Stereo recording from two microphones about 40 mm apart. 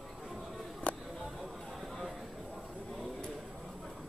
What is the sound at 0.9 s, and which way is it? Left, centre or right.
Music, left.